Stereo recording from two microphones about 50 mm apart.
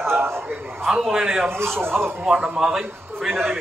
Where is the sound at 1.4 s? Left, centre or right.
Right.